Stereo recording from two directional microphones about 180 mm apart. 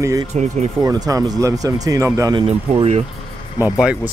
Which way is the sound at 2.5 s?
35° right (ahead or behind).